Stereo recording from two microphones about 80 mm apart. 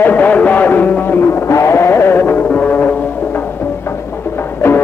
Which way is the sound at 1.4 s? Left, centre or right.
Left.